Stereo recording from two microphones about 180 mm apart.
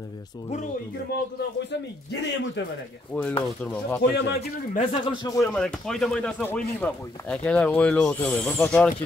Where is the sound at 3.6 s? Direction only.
5° left (ahead or behind).